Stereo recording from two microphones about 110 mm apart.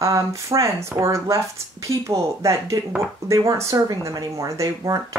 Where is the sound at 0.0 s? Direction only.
30° right (ahead or behind).